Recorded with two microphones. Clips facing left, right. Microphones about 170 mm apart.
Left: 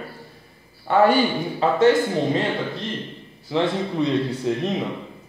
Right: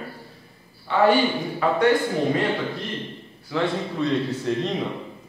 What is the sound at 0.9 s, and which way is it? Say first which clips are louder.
Speech: left 4 dB; 45° left (ahead or behind).